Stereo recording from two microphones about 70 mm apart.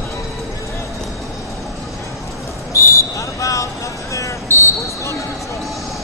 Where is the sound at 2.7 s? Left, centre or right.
Left.